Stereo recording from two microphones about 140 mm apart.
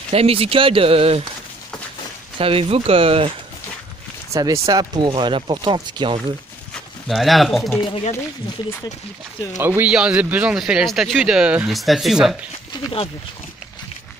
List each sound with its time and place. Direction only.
0.1 s speech: 45° right (ahead or behind)
2.3 s speech: 40° right (ahead or behind)
4.3 s speech: 25° right (ahead or behind)
6.7 s speech: centre (ahead or behind)
7.8 s speech: 45° left (ahead or behind)
9.6 s speech: 15° right (ahead or behind)